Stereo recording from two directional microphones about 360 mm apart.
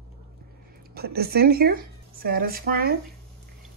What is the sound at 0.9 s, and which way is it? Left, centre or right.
Speech, right.